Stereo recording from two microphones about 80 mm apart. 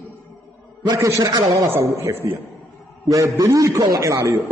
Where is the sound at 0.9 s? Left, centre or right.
Right.